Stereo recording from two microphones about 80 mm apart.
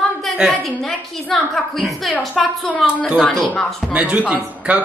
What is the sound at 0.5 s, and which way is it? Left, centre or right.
A woman's voice, centre.